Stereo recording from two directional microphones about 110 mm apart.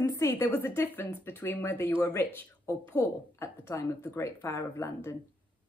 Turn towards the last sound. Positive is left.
turn(degrees=25)  # may be behind; listen again after turning